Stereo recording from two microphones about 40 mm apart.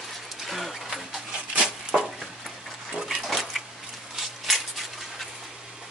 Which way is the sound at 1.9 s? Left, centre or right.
Centre.